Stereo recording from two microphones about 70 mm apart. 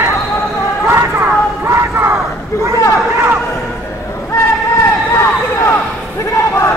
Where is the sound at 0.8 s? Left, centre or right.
Right.